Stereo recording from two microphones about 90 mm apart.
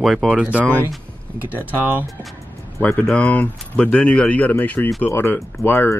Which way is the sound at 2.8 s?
10° left (ahead or behind).